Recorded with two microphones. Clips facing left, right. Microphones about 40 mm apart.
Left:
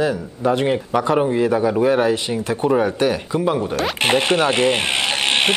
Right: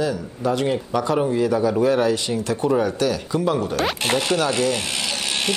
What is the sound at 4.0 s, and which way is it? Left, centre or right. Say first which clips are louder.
Speech: left 7 dB; left.